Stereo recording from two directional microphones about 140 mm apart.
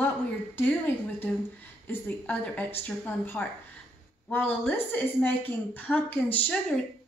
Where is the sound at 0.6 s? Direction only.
15° left (ahead or behind).